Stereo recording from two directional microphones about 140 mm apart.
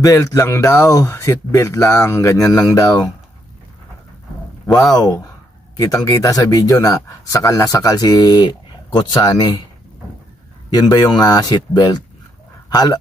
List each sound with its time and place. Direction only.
0.0 s speech: 25° left (ahead or behind)
4.9 s speech: 25° left (ahead or behind)
10.7 s speech: 30° left (ahead or behind)
12.6 s a sound: 30° left (ahead or behind)